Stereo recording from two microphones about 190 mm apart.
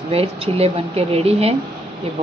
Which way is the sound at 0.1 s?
30° right (ahead or behind).